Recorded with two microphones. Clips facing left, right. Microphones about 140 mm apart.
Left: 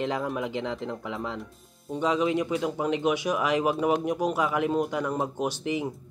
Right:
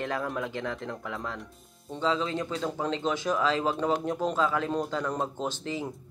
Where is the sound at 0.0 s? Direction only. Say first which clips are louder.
Left 3 dB; 15° left (ahead or behind).